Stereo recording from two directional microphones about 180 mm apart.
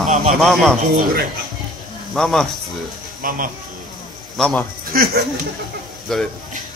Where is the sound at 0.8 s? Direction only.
50° right (ahead or behind).